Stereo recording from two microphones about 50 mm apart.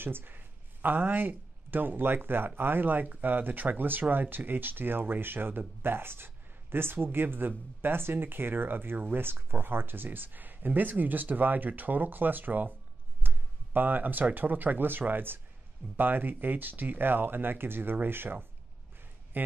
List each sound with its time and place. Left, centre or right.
0.0 s speech: right
13.2 s a sound: right
13.7 s speech: right